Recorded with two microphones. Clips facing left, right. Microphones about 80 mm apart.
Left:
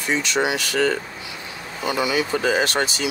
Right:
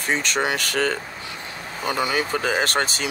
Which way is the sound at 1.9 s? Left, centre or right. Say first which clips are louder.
Left 1 dB; right.